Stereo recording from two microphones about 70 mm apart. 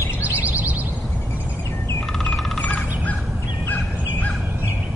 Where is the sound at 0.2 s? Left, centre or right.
Right.